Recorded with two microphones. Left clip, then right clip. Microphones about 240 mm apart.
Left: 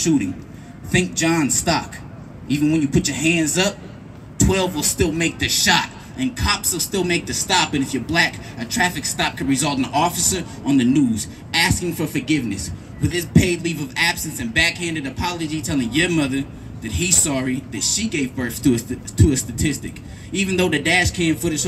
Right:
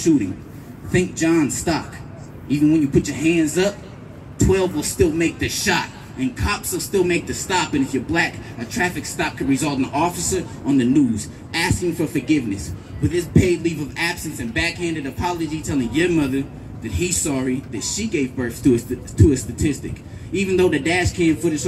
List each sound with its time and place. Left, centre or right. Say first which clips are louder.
0.9 s a man's voice: right 1 dB; left